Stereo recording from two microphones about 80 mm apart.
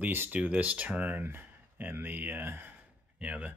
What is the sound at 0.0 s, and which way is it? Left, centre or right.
Speech, right.